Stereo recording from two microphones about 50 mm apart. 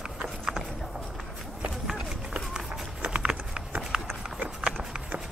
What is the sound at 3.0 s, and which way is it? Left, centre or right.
Clip-clop, right.